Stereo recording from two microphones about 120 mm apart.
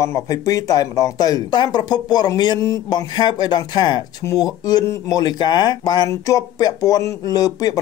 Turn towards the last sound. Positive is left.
turn(degrees=30)  # may be behind; listen again after turning